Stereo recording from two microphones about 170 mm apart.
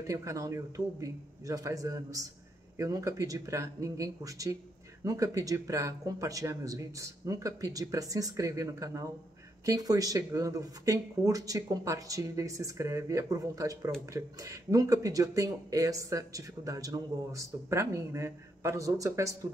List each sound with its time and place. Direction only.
0.0 s speech: 20° right (ahead or behind)